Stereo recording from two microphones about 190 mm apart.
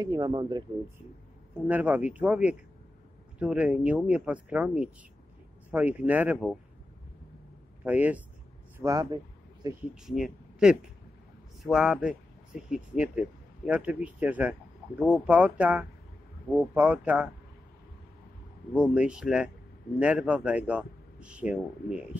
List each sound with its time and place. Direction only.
0.0 s speech: 20° right (ahead or behind)
1.7 s speech: 10° right (ahead or behind)
7.8 s speech: 10° right (ahead or behind)
8.7 s a sound: 20° right (ahead or behind)
10.0 s speech: centre (ahead or behind)
18.7 s speech: 5° right (ahead or behind)